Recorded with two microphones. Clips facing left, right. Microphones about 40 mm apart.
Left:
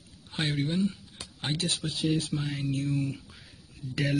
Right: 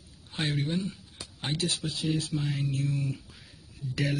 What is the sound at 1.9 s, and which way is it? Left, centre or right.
Speech, centre.